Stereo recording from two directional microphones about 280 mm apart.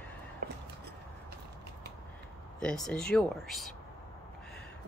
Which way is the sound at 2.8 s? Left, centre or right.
Centre.